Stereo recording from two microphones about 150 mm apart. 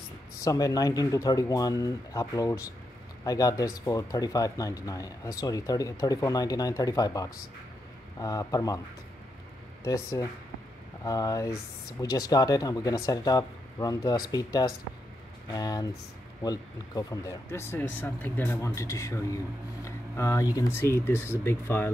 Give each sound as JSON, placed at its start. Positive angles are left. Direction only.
{"t": 0.4, "sound": "speech", "side_deg": 25}
{"t": 9.8, "sound": "speech", "side_deg": 20}